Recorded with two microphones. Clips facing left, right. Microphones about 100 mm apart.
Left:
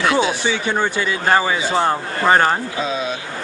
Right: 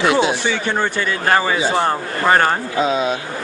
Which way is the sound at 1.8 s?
5° left (ahead or behind).